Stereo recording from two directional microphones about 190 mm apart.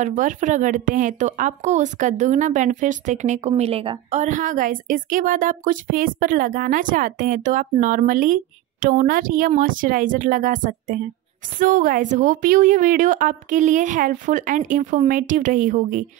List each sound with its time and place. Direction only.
0.0 s a woman's voice: 40° right (ahead or behind)
4.2 s a woman's voice: 40° right (ahead or behind)